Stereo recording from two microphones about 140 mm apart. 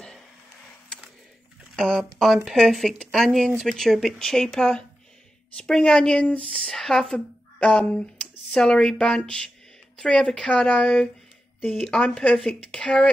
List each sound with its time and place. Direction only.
1.8 s speech: centre (ahead or behind)